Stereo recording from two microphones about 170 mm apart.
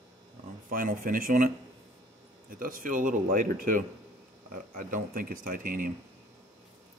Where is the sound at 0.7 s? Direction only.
55° right (ahead or behind).